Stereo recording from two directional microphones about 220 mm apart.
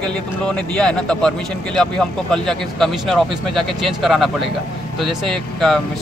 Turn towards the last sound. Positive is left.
turn(degrees=0)  # may be behind; listen again after turning